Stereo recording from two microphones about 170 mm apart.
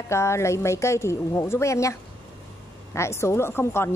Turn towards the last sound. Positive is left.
turn(degrees=15)  # may be behind; listen again after turning